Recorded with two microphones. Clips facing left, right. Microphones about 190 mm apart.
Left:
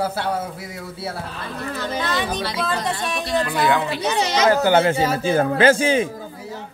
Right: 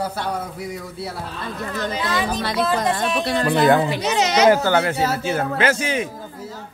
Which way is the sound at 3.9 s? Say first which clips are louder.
Right 1 dB; 15° right (ahead or behind).